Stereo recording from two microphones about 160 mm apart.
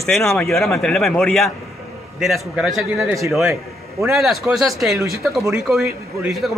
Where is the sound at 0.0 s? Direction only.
Centre (ahead or behind).